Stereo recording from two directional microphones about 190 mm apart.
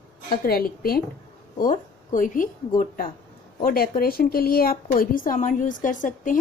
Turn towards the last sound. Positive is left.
turn(degrees=45)  # may be behind; listen again after turning